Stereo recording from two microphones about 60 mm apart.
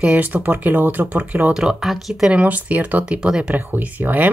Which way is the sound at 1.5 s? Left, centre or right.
Centre.